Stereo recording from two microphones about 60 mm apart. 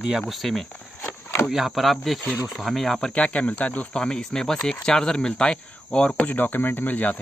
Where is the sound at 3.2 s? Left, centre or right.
Left.